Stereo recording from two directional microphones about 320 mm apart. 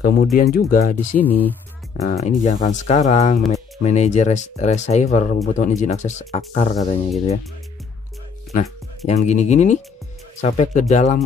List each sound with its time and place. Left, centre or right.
0.4 s speech: left
1.2 s speech: centre
2.0 s speech: left
3.4 s speech: centre
3.8 s speech: left
9.0 s speech: left